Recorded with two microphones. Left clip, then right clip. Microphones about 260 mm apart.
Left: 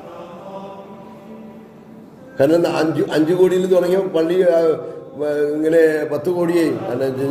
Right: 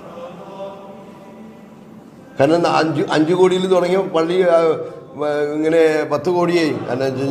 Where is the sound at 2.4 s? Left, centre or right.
Centre.